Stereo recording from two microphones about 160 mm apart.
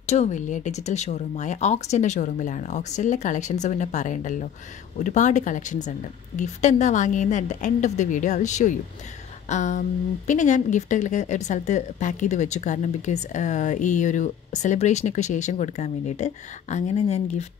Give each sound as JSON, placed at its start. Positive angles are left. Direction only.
{"t": 0.0, "sound": "a woman's voice", "side_deg": 45}